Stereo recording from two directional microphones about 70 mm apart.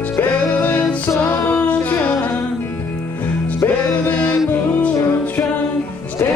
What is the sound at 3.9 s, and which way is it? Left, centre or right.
Music, left.